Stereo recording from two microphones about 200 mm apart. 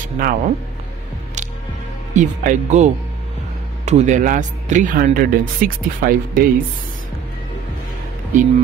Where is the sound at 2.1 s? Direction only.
40° right (ahead or behind).